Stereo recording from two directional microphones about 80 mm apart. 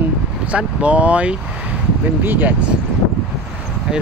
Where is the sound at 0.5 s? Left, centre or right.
Centre.